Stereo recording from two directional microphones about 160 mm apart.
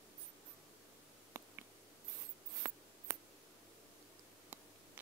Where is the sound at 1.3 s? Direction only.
15° right (ahead or behind).